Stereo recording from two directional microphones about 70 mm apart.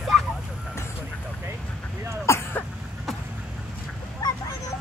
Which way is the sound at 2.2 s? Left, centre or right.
Left.